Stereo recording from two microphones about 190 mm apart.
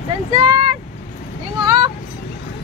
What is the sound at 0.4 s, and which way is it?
Vehicle, 25° right (ahead or behind).